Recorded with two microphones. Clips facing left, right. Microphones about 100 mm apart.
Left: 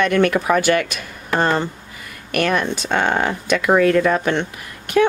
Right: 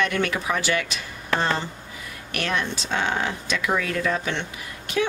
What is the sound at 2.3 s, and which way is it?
Speech, 55° left (ahead or behind).